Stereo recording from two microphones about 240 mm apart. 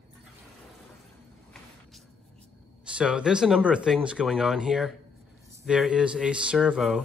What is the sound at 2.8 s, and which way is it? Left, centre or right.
Speech, centre.